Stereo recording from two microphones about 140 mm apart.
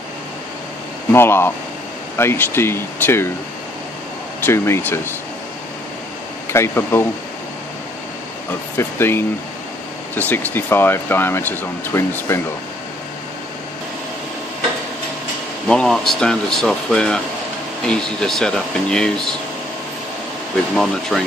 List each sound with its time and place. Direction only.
1.1 s speech: 15° left (ahead or behind)
4.5 s speech: 15° left (ahead or behind)
6.5 s speech: 15° left (ahead or behind)
8.7 s speech: 15° left (ahead or behind)
15.7 s speech: 5° left (ahead or behind)
20.7 s speech: 5° left (ahead or behind)